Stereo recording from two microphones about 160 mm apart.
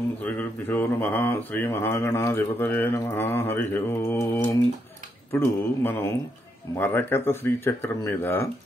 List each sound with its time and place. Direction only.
0.2 s speech: 10° left (ahead or behind)
5.3 s speech: 15° left (ahead or behind)